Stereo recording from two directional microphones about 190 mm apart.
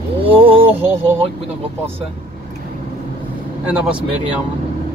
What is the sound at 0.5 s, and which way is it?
Music, 30° right (ahead or behind).